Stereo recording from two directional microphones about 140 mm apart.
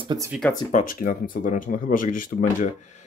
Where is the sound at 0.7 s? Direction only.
65° left (ahead or behind).